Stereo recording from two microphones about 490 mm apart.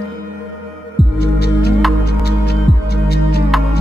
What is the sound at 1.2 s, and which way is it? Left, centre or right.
Music, centre.